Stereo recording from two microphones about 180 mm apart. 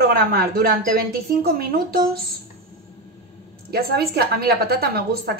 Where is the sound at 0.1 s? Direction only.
55° right (ahead or behind).